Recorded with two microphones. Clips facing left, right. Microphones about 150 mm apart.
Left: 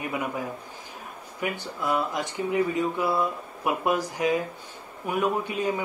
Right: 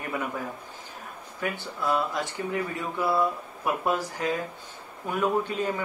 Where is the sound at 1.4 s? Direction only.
15° left (ahead or behind).